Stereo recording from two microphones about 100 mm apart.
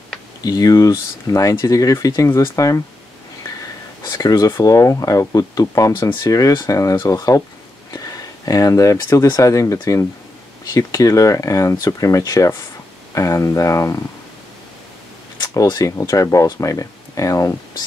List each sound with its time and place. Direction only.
0.4 s speech: 40° left (ahead or behind)
4.0 s a sound: 35° left (ahead or behind)
4.5 s speech: 35° left (ahead or behind)
15.4 s speech: 40° left (ahead or behind)